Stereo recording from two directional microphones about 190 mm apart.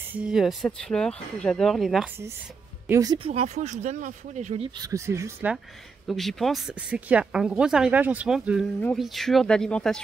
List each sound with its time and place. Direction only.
0.0 s speech: 5° right (ahead or behind)
2.9 s speech: 20° right (ahead or behind)
3.3 s speech: 35° right (ahead or behind)
4.7 s speech: 15° right (ahead or behind)
6.0 s speech: centre (ahead or behind)